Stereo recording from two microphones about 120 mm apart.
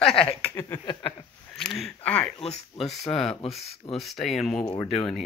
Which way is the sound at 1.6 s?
5° left (ahead or behind).